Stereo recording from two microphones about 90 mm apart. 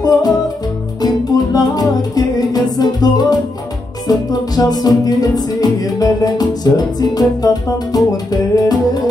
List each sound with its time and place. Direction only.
0.0 s music: 45° left (ahead or behind)